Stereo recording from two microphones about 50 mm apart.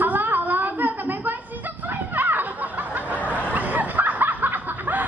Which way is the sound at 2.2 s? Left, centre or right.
Right.